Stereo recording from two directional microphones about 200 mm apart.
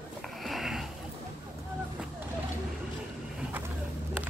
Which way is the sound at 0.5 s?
Centre (ahead or behind).